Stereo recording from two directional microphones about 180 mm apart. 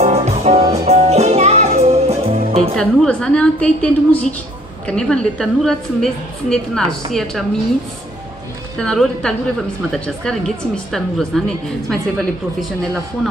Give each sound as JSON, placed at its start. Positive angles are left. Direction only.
{"t": 0.0, "sound": "music", "side_deg": -40}
{"t": 2.7, "sound": "a woman's voice", "side_deg": 5}
{"t": 8.7, "sound": "a woman's voice", "side_deg": 5}